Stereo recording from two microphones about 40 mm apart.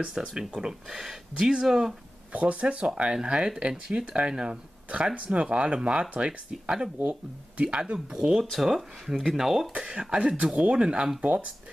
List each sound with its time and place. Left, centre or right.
0.3 s speech: centre
2.3 s speech: right; by 8.5 s centre
8.6 s speech: centre
9.7 s speech: right